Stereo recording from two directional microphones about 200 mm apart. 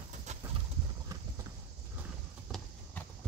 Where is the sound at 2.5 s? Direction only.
Centre (ahead or behind).